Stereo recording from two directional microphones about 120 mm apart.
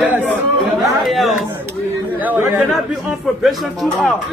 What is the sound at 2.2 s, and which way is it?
Speech, 15° right (ahead or behind).